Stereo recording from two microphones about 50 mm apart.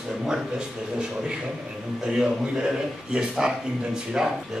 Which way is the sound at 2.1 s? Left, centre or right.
Centre.